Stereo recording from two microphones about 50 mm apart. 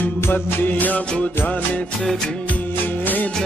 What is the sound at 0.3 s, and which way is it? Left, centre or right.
Music, left.